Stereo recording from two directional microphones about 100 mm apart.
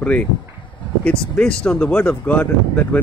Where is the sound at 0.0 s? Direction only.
15° left (ahead or behind).